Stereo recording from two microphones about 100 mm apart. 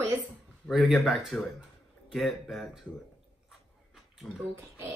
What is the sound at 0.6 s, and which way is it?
Speech, 5° right (ahead or behind).